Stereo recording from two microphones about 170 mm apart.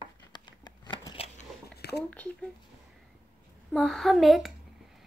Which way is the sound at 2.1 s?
10° left (ahead or behind).